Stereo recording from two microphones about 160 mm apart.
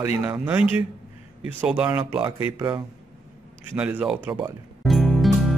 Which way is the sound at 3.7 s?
10° right (ahead or behind).